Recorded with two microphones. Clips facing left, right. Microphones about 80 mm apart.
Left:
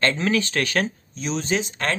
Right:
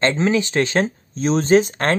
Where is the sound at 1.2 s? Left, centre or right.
Right.